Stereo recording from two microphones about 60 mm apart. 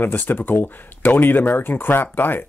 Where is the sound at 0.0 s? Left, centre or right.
Left.